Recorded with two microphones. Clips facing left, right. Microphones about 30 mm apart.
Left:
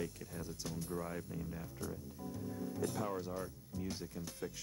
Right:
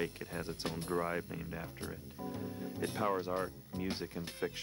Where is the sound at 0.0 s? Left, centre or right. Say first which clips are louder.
Right 5 dB; right.